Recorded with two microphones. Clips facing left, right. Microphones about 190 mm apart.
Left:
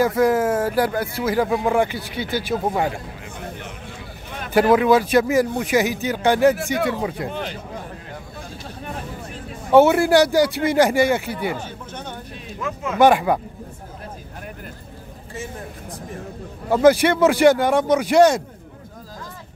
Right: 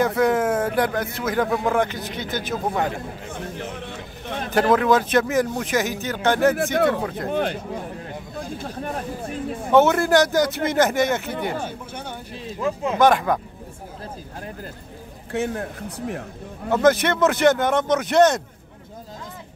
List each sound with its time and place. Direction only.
0.0 s speech: 5° left (ahead or behind)
4.6 s speech: 10° left (ahead or behind)
6.5 s speech: 55° right (ahead or behind)
7.0 s speech: 10° left (ahead or behind)
7.2 s speech: 50° right (ahead or behind)
9.7 s speech: 10° left (ahead or behind)
12.5 s speech: 30° right (ahead or behind)
13.0 s speech: 10° left (ahead or behind)
15.3 s speech: 65° right (ahead or behind)
16.7 s speech: 10° left (ahead or behind)